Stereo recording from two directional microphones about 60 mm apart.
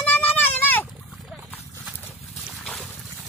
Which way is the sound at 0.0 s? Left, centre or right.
Left.